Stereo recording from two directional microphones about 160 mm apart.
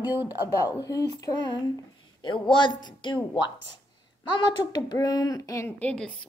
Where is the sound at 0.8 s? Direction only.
20° left (ahead or behind).